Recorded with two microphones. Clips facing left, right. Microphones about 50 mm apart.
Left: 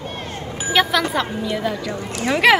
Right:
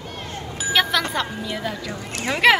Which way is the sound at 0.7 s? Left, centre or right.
Centre.